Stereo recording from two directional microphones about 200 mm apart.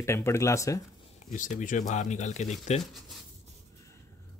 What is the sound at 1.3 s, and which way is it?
Speech, 40° left (ahead or behind).